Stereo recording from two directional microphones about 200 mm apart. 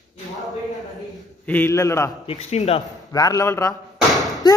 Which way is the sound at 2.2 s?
30° left (ahead or behind).